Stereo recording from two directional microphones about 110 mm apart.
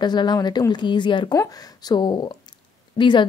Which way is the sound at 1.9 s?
45° left (ahead or behind).